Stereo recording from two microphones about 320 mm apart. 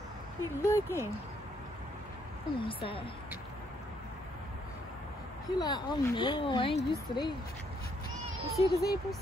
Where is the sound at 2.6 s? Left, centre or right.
Centre.